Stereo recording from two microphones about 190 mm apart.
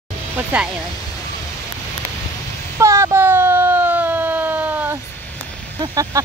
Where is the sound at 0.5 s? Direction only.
5° right (ahead or behind).